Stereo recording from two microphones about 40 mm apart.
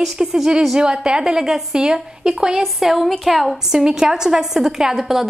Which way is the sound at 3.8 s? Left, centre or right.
Centre.